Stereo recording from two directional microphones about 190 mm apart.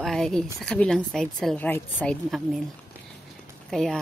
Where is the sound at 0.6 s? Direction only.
5° left (ahead or behind).